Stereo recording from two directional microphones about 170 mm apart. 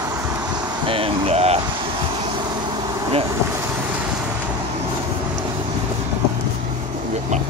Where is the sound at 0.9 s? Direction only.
35° right (ahead or behind).